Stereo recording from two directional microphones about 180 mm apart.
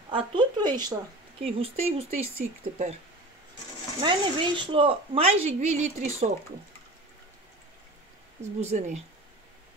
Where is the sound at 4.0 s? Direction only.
25° right (ahead or behind).